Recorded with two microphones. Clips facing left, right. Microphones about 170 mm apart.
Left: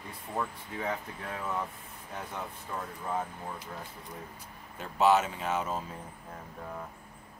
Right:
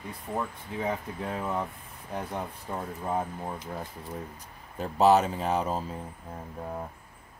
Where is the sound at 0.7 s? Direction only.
25° right (ahead or behind).